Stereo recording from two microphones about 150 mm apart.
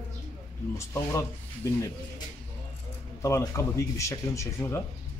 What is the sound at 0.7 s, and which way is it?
Speech, 20° left (ahead or behind).